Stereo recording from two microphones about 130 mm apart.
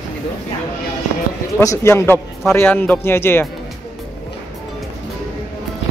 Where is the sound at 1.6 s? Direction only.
25° left (ahead or behind).